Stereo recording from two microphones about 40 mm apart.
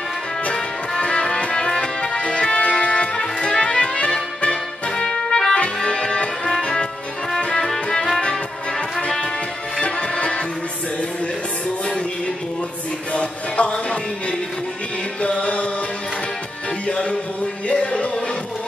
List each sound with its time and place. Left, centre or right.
0.5 s music: left
4.9 s trumpet: centre
5.9 s music: left
9.8 s tabla: left
13.1 s music: left
15.2 s chant: left
16.8 s music: left